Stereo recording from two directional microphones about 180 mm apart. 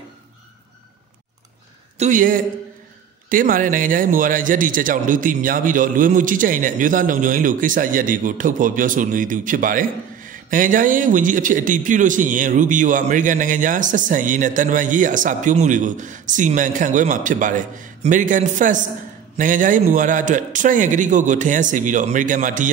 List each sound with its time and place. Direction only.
2.0 s a man's voice: 45° right (ahead or behind)